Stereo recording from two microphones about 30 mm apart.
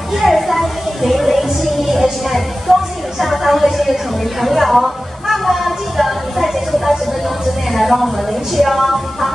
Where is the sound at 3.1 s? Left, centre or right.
Centre.